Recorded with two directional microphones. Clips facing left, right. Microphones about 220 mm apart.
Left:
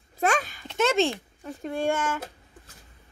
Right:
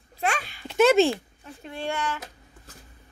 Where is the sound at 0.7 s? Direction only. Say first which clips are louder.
Right 5 dB; 5° right (ahead or behind).